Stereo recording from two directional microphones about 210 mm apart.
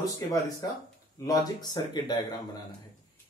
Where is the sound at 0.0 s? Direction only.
15° left (ahead or behind).